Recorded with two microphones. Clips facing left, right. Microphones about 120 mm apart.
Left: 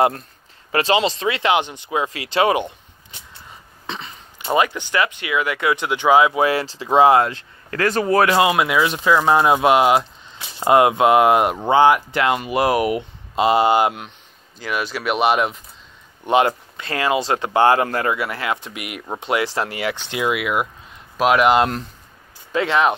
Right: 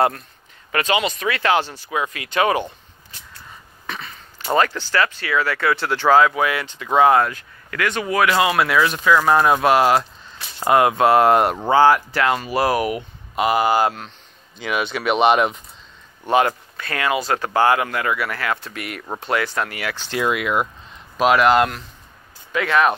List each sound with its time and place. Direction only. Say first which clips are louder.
0.7 s speech: left 3 dB; 30° left (ahead or behind)
3.8 s a sound: left 1 dB; 25° left (ahead or behind)
4.5 s speech: even; 15° left (ahead or behind)
6.4 s speech: left 3 dB; 35° left (ahead or behind)
8.4 s speech: left 1 dB; 20° left (ahead or behind)
14.6 s speech: right 1 dB; centre (ahead or behind)
16.3 s speech: left 1 dB; 20° left (ahead or behind)
20.1 s speech: right 2 dB; 10° left (ahead or behind)
21.5 s speech: even; 30° left (ahead or behind)